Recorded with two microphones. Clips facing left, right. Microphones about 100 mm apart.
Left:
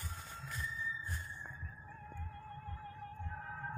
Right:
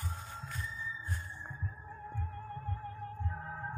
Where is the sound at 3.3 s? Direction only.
35° right (ahead or behind).